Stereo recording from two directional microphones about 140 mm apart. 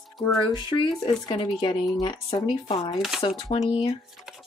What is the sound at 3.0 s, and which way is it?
Speech, 5° right (ahead or behind).